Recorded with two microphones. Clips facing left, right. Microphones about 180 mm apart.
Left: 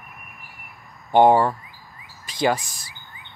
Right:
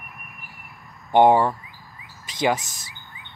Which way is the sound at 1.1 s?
15° right (ahead or behind).